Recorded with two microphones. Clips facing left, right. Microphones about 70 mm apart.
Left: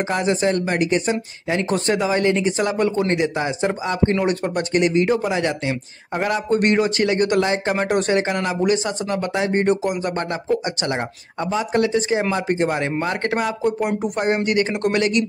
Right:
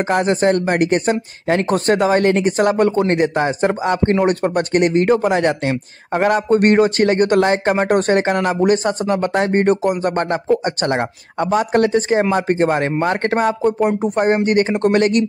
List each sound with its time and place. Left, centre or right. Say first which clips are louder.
0.1 s speech: right 5 dB; right